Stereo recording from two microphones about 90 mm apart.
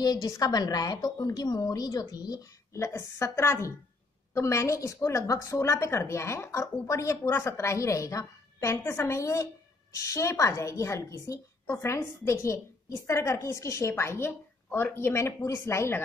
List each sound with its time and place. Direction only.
0.0 s a woman's voice: 45° left (ahead or behind)